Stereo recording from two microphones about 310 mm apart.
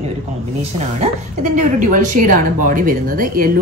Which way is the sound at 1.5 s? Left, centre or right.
Right.